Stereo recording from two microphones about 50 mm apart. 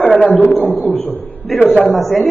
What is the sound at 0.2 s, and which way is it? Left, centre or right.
Speech, left.